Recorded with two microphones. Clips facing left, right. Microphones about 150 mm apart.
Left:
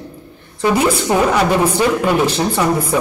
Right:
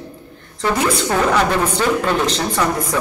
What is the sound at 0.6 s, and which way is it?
A woman's voice, 15° left (ahead or behind).